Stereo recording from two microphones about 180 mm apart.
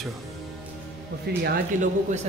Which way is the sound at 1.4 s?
50° right (ahead or behind).